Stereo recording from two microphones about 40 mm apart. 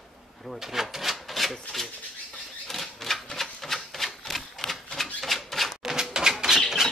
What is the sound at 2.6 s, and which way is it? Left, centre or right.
Typewriter, centre.